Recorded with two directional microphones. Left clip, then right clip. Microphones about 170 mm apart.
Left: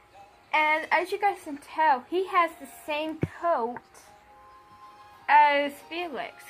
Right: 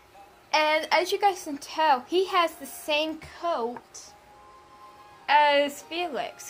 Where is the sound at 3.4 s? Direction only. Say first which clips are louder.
Left 2 dB; 20° left (ahead or behind).